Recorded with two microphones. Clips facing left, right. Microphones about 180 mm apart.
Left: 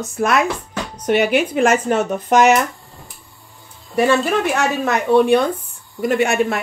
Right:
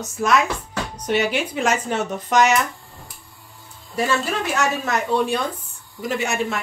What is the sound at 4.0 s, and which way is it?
Speech, 60° left (ahead or behind).